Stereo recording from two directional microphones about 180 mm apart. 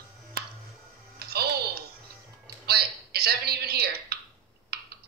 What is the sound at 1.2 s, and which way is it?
Music, 60° right (ahead or behind).